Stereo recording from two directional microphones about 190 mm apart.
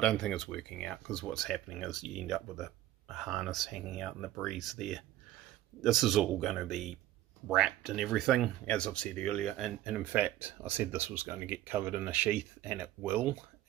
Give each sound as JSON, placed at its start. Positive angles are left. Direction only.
{"t": 0.0, "sound": "speech", "side_deg": 5}